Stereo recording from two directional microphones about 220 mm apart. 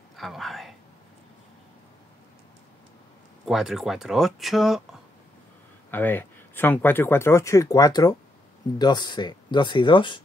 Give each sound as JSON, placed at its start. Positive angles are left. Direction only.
{"t": 0.1, "sound": "speech", "side_deg": 0}
{"t": 3.4, "sound": "speech", "side_deg": 0}
{"t": 5.9, "sound": "speech", "side_deg": 10}